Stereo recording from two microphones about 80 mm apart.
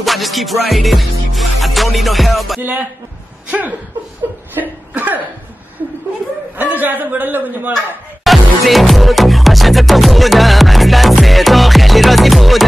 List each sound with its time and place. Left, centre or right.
0.0 s music: centre
3.4 s speech: centre
4.6 s chuckle: right
6.5 s a man's voice: right
8.2 s music: centre